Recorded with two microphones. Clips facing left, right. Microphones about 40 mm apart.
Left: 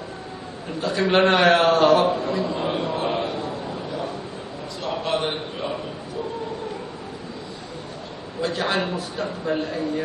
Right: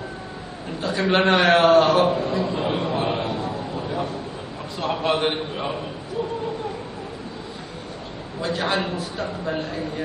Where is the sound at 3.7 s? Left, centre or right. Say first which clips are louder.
Right 2 dB; centre.